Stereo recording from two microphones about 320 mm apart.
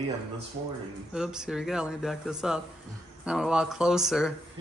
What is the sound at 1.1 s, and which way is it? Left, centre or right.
A man's voice, centre.